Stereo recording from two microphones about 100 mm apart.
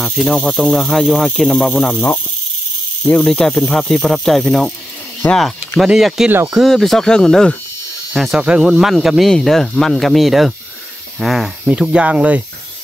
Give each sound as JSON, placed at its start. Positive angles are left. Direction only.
{"t": 0.0, "sound": "speech", "side_deg": 5}
{"t": 3.1, "sound": "speech", "side_deg": 10}
{"t": 5.2, "sound": "speech", "side_deg": 20}
{"t": 5.8, "sound": "speech", "side_deg": 0}
{"t": 6.2, "sound": "speech", "side_deg": -20}
{"t": 6.5, "sound": "speech", "side_deg": 0}